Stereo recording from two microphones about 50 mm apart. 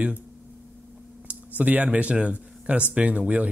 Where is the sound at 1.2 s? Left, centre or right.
Right.